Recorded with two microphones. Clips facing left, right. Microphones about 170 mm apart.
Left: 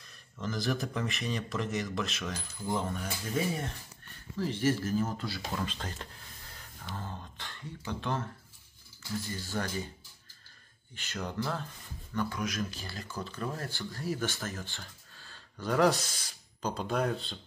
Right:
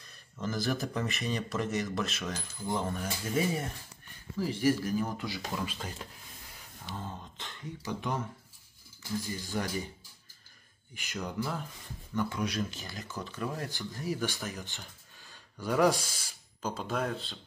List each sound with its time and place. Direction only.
0.4 s speech: 5° right (ahead or behind)
9.3 s speech: 15° right (ahead or behind)
11.0 s speech: 10° right (ahead or behind)
12.4 s speech: 30° right (ahead or behind)
12.8 s speech: 20° right (ahead or behind); by 17.4 s centre (ahead or behind)